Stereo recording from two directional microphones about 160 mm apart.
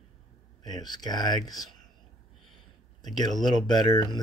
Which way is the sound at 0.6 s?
25° left (ahead or behind).